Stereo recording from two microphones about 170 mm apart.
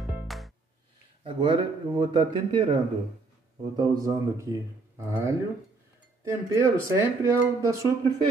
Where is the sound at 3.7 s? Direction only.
20° right (ahead or behind).